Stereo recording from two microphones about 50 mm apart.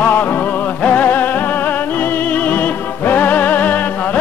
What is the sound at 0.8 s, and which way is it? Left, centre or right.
Music, left.